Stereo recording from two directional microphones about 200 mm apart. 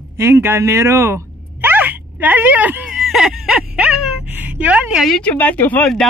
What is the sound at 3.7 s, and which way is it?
A woman's voice, 5° right (ahead or behind).